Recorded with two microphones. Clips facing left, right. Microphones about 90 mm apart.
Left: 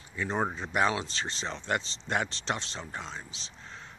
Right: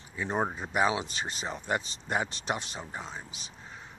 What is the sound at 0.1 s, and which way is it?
Speech, 15° right (ahead or behind).